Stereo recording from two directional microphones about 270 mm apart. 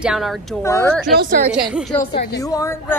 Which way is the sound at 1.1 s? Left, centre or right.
Right.